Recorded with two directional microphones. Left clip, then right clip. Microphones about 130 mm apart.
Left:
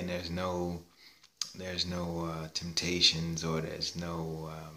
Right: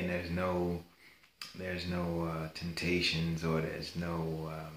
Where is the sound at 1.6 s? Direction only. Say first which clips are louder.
Left 1 dB; 30° left (ahead or behind).